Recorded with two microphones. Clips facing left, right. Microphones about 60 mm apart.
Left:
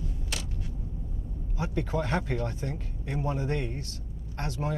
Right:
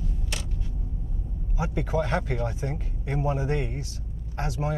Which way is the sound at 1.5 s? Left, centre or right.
Centre.